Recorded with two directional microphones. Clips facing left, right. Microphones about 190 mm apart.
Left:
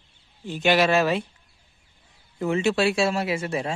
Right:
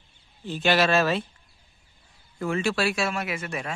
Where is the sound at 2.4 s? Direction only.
20° left (ahead or behind).